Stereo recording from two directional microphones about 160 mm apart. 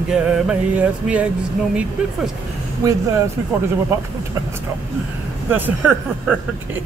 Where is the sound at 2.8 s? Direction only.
20° right (ahead or behind).